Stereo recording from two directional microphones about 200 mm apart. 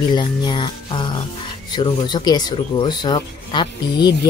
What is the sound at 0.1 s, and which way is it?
Speech, 25° left (ahead or behind).